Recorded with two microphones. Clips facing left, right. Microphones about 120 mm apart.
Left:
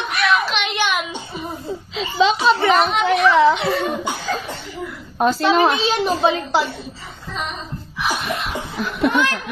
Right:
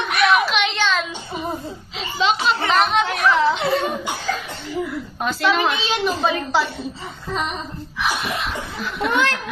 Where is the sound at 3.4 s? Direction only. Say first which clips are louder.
Left 3 dB; 70° left (ahead or behind).